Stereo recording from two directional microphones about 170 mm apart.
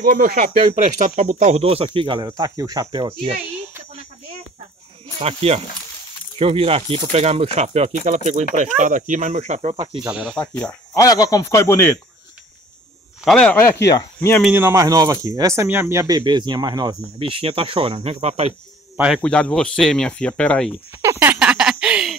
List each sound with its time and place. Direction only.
0.0 s speech: 65° right (ahead or behind); by 3.7 s 35° right (ahead or behind)
5.2 s speech: 35° right (ahead or behind)
10.0 s speech: 5° right (ahead or behind)
10.3 s speech: 5° left (ahead or behind)
11.0 s speech: 20° left (ahead or behind)
13.2 s speech: 5° left (ahead or behind)
14.5 s speech: 15° right (ahead or behind); by 18.5 s 40° right (ahead or behind)
18.9 s speech: 5° right (ahead or behind)
19.2 s speech: 5° left (ahead or behind)
21.0 s speech: 15° right (ahead or behind)
21.4 s a sound: 5° right (ahead or behind)